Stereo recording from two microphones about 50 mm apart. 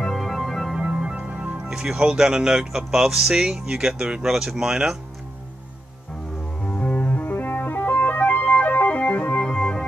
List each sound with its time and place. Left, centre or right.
0.0 s music: centre
0.4 s organ: centre
0.9 s speech: right
6.6 s music: left